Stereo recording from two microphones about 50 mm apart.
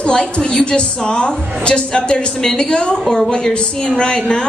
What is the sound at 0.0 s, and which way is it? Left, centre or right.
A woman's voice, centre.